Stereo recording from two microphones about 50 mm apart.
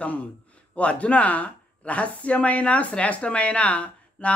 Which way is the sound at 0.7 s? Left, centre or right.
Left.